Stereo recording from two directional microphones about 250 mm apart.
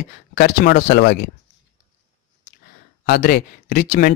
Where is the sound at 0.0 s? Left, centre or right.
Left.